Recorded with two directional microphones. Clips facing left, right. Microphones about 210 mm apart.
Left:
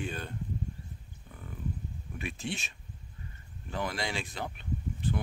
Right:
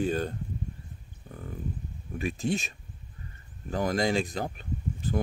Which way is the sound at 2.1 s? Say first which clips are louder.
Right 8 dB; 40° right (ahead or behind).